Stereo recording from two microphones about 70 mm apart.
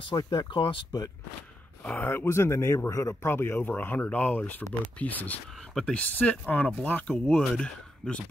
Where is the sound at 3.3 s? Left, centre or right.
Left.